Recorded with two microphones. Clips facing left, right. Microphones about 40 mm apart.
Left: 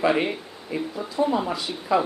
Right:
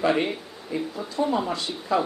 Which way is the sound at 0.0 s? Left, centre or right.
Centre.